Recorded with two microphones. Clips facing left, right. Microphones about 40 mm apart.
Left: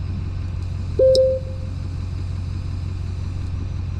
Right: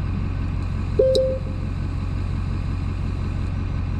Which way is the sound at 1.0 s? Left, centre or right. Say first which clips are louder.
Left 3 dB; right.